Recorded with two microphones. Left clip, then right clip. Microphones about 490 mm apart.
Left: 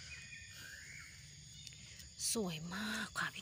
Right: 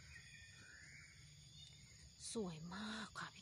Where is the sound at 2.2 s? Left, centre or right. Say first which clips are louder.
Left 8 dB; right.